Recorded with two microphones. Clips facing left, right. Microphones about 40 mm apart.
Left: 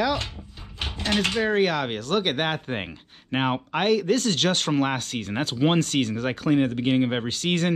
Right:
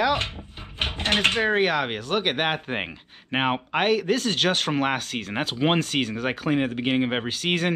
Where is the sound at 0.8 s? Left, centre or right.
Right.